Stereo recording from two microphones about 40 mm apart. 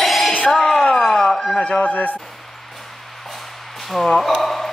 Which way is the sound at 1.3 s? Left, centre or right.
Centre.